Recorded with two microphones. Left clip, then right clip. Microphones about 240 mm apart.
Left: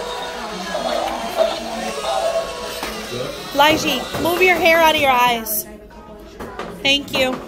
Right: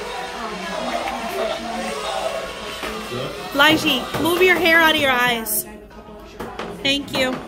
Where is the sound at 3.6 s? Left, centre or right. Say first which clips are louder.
Left 1 dB; centre.